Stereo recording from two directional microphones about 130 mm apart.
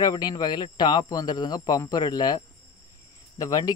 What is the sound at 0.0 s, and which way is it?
Speech, 30° left (ahead or behind).